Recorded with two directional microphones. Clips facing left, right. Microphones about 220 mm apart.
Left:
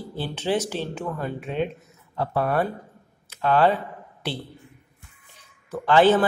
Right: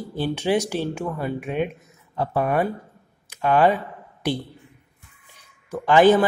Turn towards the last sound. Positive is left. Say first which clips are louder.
# right 2 dB
turn(degrees=-15)  # may be behind; listen again after turning